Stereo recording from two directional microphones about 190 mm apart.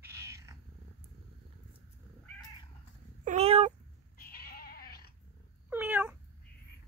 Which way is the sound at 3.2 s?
35° right (ahead or behind).